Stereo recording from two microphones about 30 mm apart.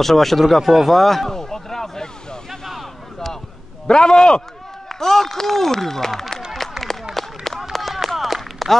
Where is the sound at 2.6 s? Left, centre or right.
Centre.